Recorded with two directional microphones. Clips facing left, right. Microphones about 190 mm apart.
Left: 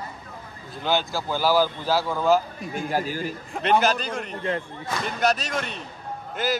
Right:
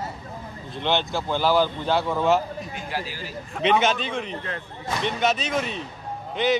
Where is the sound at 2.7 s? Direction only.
45° left (ahead or behind).